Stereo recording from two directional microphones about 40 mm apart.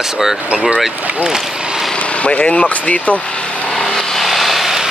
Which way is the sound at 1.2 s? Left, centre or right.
Centre.